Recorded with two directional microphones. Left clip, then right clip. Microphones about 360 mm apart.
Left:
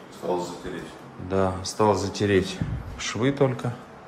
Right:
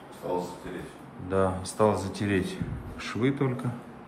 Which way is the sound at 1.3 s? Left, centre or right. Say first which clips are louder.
Left 2 dB; centre.